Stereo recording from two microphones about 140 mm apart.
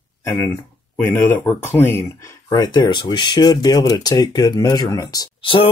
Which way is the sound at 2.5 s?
30° left (ahead or behind).